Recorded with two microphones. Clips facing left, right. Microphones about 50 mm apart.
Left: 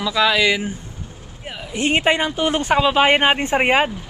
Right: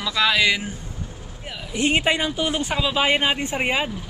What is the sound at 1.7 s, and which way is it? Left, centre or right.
Speech, left.